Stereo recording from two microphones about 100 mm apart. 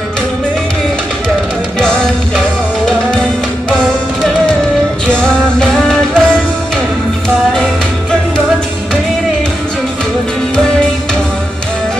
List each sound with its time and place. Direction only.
1.8 s music: 5° left (ahead or behind)
5.0 s music: 5° left (ahead or behind)